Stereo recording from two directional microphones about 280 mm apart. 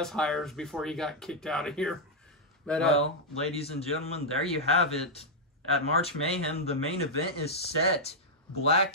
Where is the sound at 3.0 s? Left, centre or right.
Left.